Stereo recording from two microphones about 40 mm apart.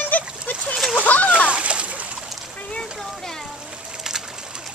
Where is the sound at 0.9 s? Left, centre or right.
Left.